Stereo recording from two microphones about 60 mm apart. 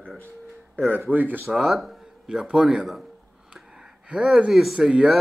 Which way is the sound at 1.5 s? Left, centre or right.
Centre.